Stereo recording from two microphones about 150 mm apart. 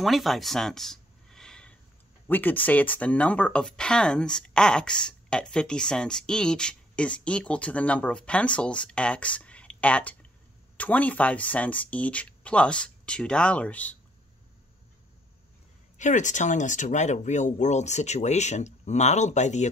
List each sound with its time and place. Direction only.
0.0 s a sound: centre (ahead or behind)
2.2 s speech: 10° left (ahead or behind)
16.0 s speech: 55° left (ahead or behind)